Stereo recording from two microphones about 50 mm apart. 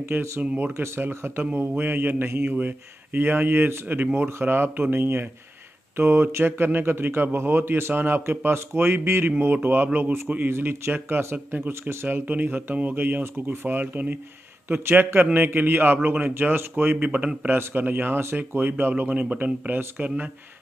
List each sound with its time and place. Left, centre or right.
0.6 s a man's voice: right
4.4 s a man's voice: right
11.3 s a man's voice: right
11.9 s a man's voice: right
12.3 s a man's voice: right
17.6 s a man's voice: right